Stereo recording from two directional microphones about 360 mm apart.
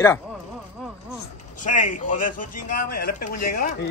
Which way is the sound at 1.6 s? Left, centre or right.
Left.